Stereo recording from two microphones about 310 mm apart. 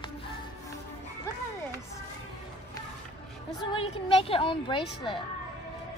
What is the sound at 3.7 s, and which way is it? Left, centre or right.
A woman's voice, centre.